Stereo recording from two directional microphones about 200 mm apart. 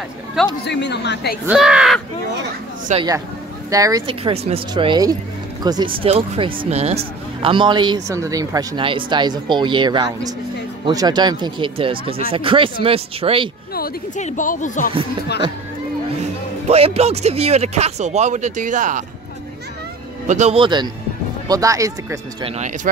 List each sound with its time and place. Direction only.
0.7 s a woman's voice: 60° left (ahead or behind)
1.4 s speech: 5° right (ahead or behind)
2.9 s speech: 35° right (ahead or behind)
3.7 s speech: 20° right (ahead or behind)
13.7 s speech: 50° left (ahead or behind)
16.2 s speech: 30° right (ahead or behind)
20.2 s speech: 35° right (ahead or behind); by 22.2 s 15° right (ahead or behind)